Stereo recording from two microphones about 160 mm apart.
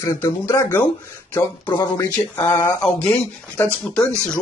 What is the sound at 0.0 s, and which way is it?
Speech, 15° left (ahead or behind).